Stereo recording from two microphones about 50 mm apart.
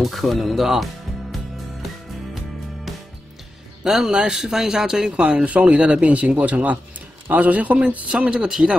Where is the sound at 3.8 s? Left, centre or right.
Centre.